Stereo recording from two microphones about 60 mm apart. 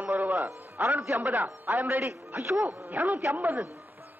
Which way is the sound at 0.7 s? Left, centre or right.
Right.